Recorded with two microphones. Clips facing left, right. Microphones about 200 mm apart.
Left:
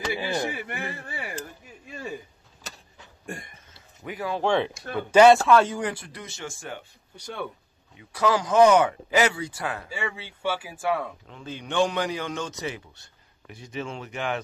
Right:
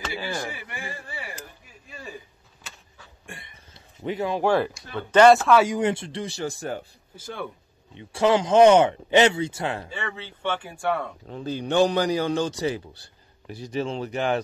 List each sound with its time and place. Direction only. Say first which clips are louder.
0.0 s speech: left 3 dB; 20° left (ahead or behind)
0.7 s speech: left 3 dB; 60° left (ahead or behind)
2.6 s vehicle: left 4 dB; 40° left (ahead or behind)
3.3 s a sound: left 7 dB; 45° left (ahead or behind)
3.7 s a sound: right 7 dB; 25° right (ahead or behind)
4.4 s speech: right 1 dB; 5° right (ahead or behind)
4.9 s speech: even; 10° left (ahead or behind)
5.3 s speech: right 1 dB; 5° right (ahead or behind)
5.7 s a man's voice: right 6 dB; 25° right (ahead or behind)
7.2 s speech: even; centre (ahead or behind)
7.9 s speech: right 3 dB; 25° right (ahead or behind)
9.8 s speech: left 1 dB; 10° left (ahead or behind)
11.2 s a man's voice: right 8 dB; 35° right (ahead or behind)